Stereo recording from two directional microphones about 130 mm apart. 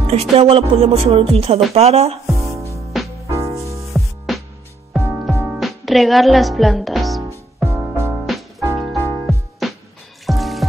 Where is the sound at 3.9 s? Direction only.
Centre (ahead or behind).